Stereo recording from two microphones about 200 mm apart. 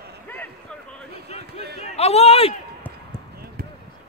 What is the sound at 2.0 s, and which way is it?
Speech, 30° left (ahead or behind).